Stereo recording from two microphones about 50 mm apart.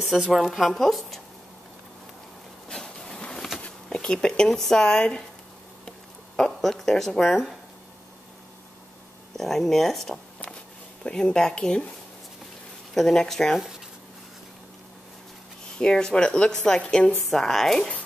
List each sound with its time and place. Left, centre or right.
0.2 s a woman's voice: centre
2.7 s a sound: centre
3.9 s speech: centre
5.9 s a sound: centre
9.4 s a woman's voice: centre
12.9 s speech: centre
15.8 s speech: centre
17.2 s speech: centre